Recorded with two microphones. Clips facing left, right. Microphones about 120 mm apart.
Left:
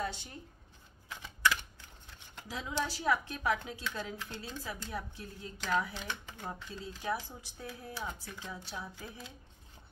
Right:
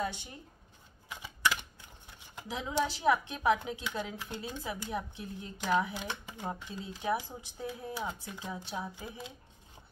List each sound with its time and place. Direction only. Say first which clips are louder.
0.0 s speech: right 2 dB; 15° right (ahead or behind)
1.0 s typewriter: left 1 dB; 15° right (ahead or behind)
2.3 s speech: right 4 dB; 20° right (ahead or behind)